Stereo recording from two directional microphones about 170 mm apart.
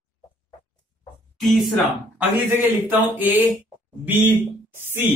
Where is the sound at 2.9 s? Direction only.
10° right (ahead or behind).